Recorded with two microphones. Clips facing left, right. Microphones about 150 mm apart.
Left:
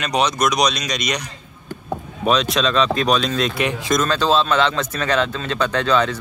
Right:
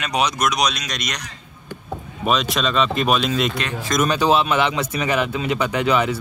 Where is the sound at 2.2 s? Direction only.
Centre (ahead or behind).